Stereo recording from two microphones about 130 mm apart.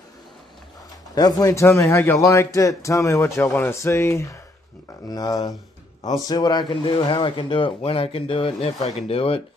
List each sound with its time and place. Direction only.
1.1 s a man's voice: 25° left (ahead or behind); by 9.4 s 50° left (ahead or behind)